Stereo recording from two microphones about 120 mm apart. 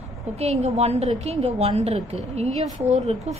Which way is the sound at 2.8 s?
70° right (ahead or behind).